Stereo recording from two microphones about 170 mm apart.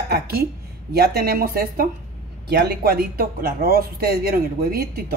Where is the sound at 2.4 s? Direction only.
75° right (ahead or behind).